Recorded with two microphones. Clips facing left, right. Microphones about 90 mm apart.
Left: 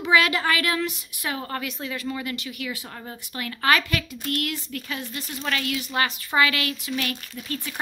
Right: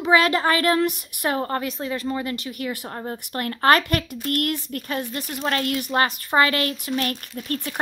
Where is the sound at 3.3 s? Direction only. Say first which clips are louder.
Right 4 dB; 45° right (ahead or behind).